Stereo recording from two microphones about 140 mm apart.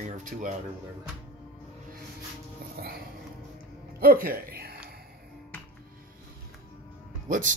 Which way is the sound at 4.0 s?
90° right.